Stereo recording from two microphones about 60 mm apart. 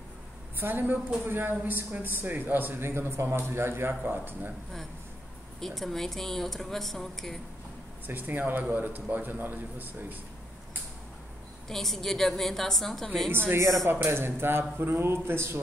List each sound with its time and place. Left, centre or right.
0.6 s a man's voice: right
5.6 s speech: centre
8.1 s a man's voice: right
11.7 s speech: centre
13.8 s a man's voice: right